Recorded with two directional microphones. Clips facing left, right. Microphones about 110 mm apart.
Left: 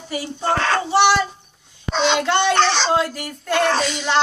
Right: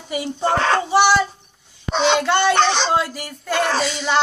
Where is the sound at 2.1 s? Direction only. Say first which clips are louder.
Right 1 dB; 5° right (ahead or behind).